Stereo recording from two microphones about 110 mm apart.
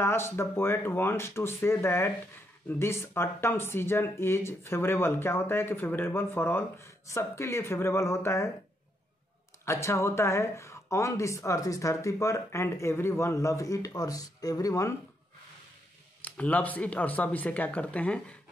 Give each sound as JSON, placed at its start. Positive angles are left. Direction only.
{"t": 0.0, "sound": "speech", "side_deg": 20}
{"t": 9.7, "sound": "speech", "side_deg": 25}
{"t": 16.3, "sound": "speech", "side_deg": 15}